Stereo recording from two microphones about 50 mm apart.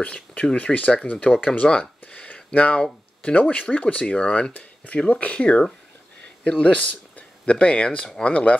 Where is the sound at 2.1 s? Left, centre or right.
Left.